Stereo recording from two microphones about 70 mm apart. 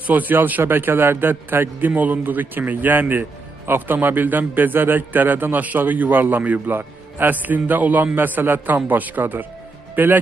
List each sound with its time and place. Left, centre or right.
0.0 s a man's voice: right